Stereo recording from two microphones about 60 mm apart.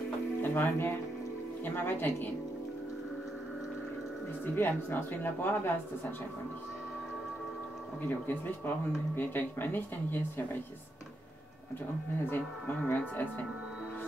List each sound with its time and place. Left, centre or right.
0.4 s speech: left
4.6 s speech: left
8.0 s speech: left
12.3 s speech: left